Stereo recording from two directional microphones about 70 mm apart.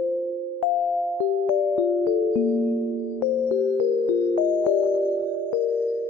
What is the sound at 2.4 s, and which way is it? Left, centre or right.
Music, right.